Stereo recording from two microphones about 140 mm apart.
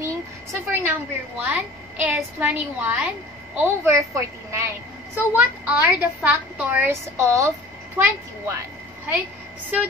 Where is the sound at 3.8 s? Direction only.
20° right (ahead or behind).